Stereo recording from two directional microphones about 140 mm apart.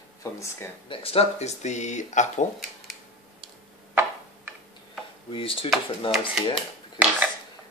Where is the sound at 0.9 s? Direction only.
45° left (ahead or behind); by 2.5 s 60° left (ahead or behind).